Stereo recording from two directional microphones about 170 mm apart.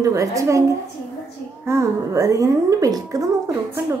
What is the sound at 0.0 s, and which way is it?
A woman's voice, 20° right (ahead or behind).